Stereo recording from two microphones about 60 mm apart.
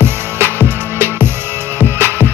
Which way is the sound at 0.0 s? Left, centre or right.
Right.